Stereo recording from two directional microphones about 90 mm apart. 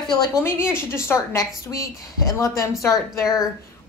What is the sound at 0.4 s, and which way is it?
A woman's voice, 25° left (ahead or behind).